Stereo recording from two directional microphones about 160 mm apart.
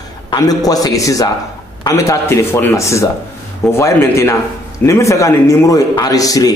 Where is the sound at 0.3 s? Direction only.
25° left (ahead or behind).